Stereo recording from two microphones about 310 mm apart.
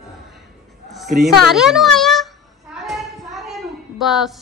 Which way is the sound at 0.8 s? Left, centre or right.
Centre.